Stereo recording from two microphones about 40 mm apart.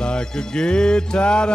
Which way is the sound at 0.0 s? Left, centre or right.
Centre.